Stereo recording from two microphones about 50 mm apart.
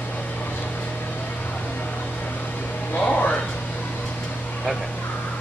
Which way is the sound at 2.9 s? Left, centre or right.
Left.